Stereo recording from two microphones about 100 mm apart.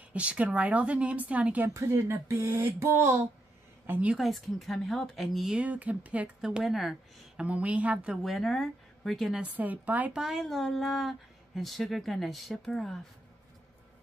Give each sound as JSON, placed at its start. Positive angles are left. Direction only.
{"t": 0.1, "sound": "speech", "side_deg": -15}
{"t": 1.7, "sound": "speech", "side_deg": -30}
{"t": 4.1, "sound": "speech", "side_deg": 0}
{"t": 5.6, "sound": "speech", "side_deg": -15}
{"t": 7.4, "sound": "speech", "side_deg": -15}
{"t": 8.2, "sound": "speech", "side_deg": 0}
{"t": 9.6, "sound": "speech", "side_deg": -15}
{"t": 10.2, "sound": "speech", "side_deg": 0}